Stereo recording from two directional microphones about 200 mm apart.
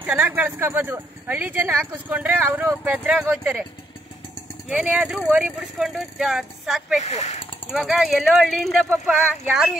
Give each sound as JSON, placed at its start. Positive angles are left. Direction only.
{"t": 0.0, "sound": "speech", "side_deg": -5}
{"t": 4.6, "sound": "speech", "side_deg": -5}
{"t": 7.0, "sound": "speech", "side_deg": 35}
{"t": 7.7, "sound": "speech", "side_deg": 0}